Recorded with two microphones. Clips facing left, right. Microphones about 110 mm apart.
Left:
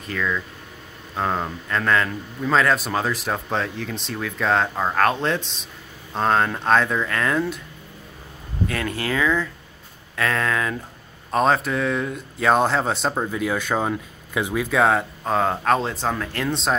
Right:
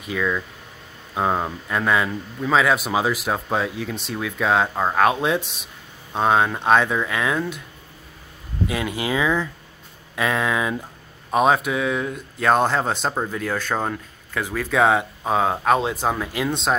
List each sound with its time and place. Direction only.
0.0 s a man's voice: 10° right (ahead or behind)
8.6 s a man's voice: 15° right (ahead or behind); by 14.7 s 10° left (ahead or behind)
14.7 s speech: centre (ahead or behind)